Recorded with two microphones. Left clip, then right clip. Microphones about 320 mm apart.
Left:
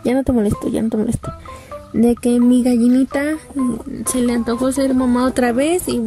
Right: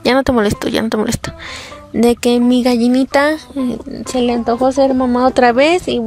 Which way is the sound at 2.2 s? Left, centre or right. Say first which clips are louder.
Right 3 dB; centre.